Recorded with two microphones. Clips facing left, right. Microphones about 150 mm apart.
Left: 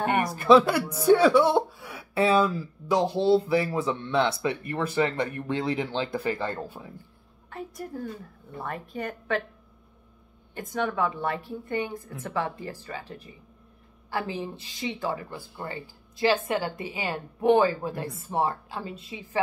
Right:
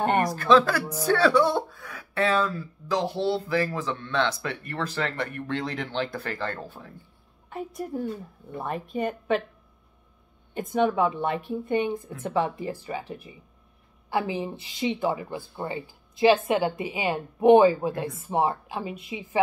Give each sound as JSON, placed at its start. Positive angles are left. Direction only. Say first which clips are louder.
{"t": 0.4, "sound": "speech", "louder": "left 4 dB", "side_deg": 15}
{"t": 7.4, "sound": "speech", "louder": "right 3 dB", "side_deg": -20}
{"t": 10.5, "sound": "speech", "louder": "right 5 dB", "side_deg": -20}